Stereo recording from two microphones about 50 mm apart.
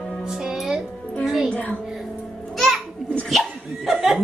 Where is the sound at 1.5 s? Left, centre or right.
Left.